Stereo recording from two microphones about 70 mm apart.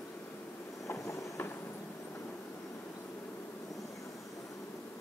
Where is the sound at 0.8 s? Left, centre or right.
Left.